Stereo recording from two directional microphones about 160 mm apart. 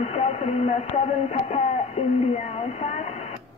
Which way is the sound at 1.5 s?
45° left (ahead or behind).